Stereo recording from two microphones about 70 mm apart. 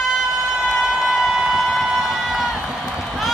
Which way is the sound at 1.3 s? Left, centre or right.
Centre.